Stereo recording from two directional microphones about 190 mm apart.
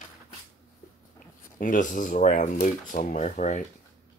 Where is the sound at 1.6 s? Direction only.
45° left (ahead or behind).